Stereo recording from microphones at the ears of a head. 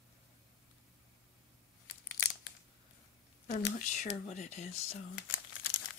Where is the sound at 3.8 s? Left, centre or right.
Left.